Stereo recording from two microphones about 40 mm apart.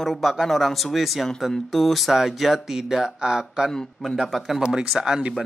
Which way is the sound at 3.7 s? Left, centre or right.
Centre.